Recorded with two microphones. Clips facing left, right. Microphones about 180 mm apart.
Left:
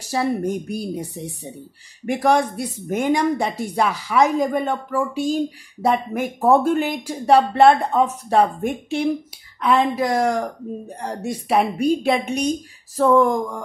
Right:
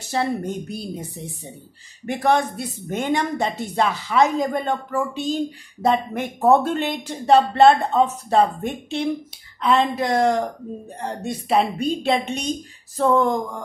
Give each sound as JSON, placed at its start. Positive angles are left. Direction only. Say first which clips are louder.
{"t": 0.1, "sound": "a woman's voice", "louder": "left 2 dB", "side_deg": 10}